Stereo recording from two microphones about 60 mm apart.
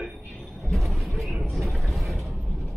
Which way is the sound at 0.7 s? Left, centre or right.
Centre.